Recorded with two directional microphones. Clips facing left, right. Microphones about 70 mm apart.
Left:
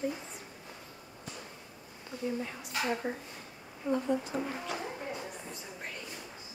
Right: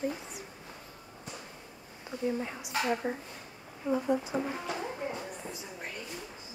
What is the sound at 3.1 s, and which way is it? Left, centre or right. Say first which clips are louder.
Speech: right 2 dB; centre.